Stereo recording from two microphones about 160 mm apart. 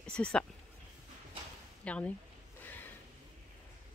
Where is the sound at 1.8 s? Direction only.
10° left (ahead or behind).